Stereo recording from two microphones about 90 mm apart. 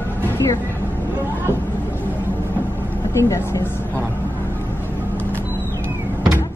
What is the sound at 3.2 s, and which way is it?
Speech, 35° left (ahead or behind).